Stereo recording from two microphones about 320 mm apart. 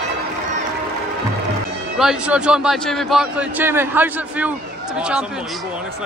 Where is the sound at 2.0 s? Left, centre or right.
Centre.